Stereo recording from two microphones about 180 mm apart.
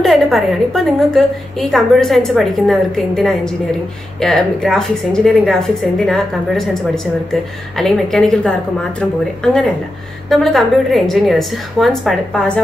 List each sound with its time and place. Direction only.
0.0 s a woman's voice: centre (ahead or behind)